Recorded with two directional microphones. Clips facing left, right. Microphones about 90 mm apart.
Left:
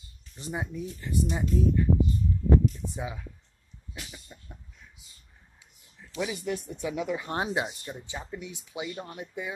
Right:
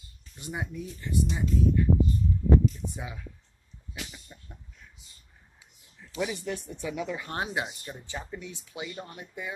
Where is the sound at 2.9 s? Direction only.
25° left (ahead or behind).